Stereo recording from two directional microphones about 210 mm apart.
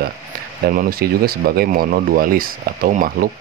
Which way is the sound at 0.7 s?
45° right (ahead or behind).